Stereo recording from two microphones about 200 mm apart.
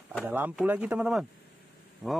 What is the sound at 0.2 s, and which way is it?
A man's voice, 10° right (ahead or behind).